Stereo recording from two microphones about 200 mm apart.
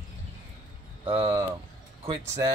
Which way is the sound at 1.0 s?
25° right (ahead or behind).